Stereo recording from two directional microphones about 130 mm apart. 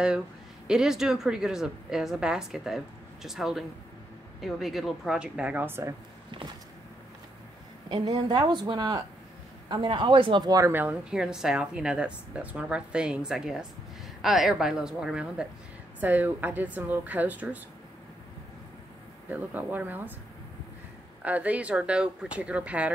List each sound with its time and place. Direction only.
0.7 s a woman's voice: 5° right (ahead or behind)
7.9 s speech: 35° right (ahead or behind)
10.7 s a woman's voice: 15° right (ahead or behind)
19.3 s a woman's voice: 15° right (ahead or behind)
21.2 s a woman's voice: 10° right (ahead or behind)